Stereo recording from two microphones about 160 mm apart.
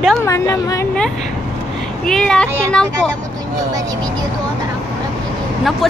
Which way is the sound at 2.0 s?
5° left (ahead or behind).